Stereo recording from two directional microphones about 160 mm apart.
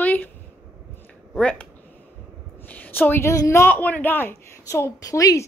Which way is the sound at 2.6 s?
10° left (ahead or behind).